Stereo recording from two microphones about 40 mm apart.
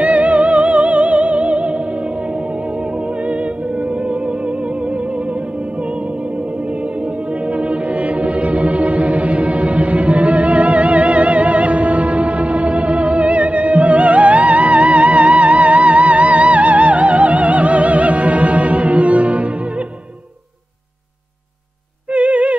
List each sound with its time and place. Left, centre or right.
0.0 s music: right
7.4 s music: right
22.1 s music: right